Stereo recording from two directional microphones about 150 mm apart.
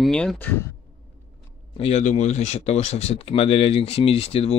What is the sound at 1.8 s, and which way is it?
Speech, 45° left (ahead or behind).